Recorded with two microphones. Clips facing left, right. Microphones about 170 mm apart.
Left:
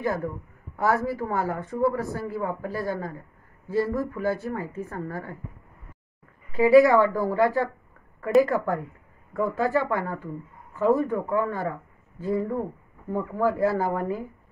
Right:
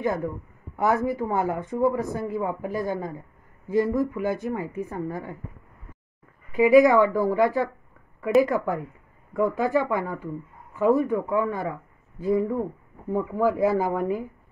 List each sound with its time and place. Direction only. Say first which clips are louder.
0.0 s a man's voice: right 1 dB; 20° right (ahead or behind)
6.5 s speech: even; 15° right (ahead or behind)